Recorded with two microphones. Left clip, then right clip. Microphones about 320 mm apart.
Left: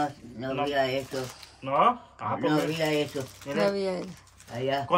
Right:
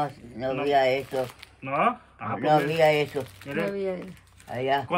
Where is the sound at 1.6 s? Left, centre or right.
Centre.